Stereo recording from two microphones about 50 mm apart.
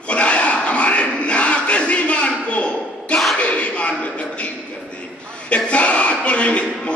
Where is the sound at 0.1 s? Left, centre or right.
Left.